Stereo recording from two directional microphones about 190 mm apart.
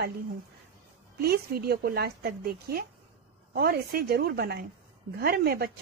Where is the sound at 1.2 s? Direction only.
55° right (ahead or behind).